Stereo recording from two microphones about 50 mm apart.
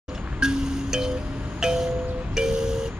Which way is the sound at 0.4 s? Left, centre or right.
Centre.